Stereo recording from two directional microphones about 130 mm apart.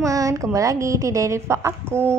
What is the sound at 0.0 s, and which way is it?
Speech, 25° right (ahead or behind).